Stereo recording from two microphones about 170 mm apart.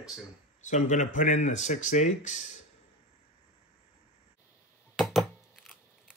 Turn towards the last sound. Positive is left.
turn(degrees=0)  # may be behind; listen again after turning